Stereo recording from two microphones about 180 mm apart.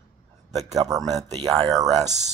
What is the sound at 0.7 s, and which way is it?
Speech, 20° right (ahead or behind).